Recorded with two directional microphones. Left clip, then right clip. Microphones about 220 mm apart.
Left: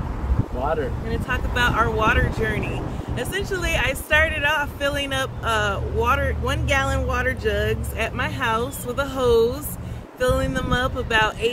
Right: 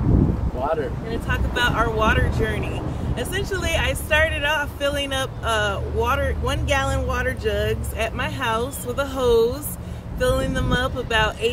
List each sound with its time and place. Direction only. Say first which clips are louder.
0.6 s boat: even; centre (ahead or behind)
1.1 s speech: even; 10° left (ahead or behind)